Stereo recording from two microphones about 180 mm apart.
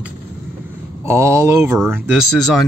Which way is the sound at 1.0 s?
15° right (ahead or behind).